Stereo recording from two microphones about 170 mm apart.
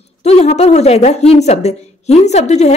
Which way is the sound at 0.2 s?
40° left (ahead or behind).